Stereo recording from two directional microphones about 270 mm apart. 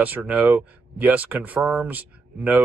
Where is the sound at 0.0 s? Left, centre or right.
Centre.